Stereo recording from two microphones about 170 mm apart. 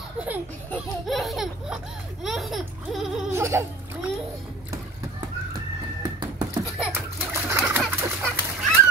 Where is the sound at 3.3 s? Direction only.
15° right (ahead or behind).